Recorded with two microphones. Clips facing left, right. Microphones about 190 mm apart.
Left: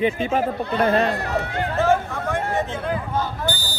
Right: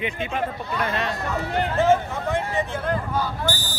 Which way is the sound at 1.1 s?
65° left (ahead or behind).